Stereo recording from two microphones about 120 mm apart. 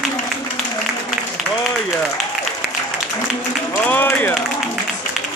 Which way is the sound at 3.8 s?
15° left (ahead or behind).